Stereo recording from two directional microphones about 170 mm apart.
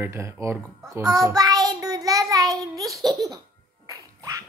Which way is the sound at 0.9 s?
20° right (ahead or behind).